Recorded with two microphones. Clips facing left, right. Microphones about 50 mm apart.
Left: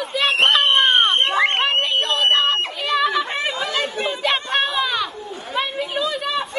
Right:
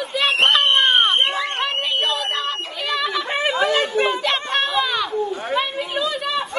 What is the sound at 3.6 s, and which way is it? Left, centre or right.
Chatter, right.